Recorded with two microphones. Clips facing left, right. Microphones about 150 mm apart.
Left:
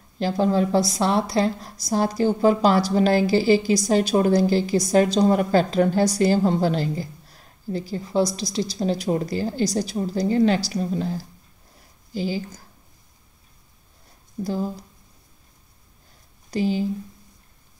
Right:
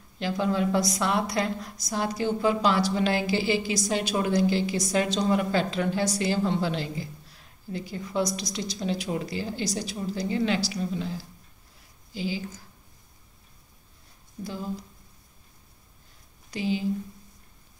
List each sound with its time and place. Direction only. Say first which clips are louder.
0.2 s a woman's voice: left 5 dB; 35° left (ahead or behind)
14.4 s speech: left 9 dB; 40° left (ahead or behind)
16.4 s speech: left 5 dB; 40° left (ahead or behind)